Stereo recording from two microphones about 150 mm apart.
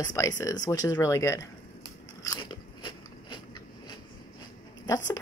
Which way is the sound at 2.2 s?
30° left (ahead or behind).